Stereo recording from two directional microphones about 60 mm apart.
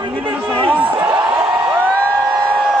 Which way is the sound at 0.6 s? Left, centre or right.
Right.